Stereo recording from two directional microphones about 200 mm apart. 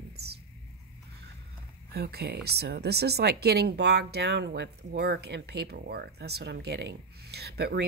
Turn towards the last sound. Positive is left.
turn(degrees=-55)  # may be behind; listen again after turning